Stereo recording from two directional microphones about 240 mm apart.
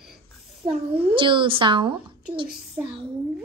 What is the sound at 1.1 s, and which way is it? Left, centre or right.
Speech, right.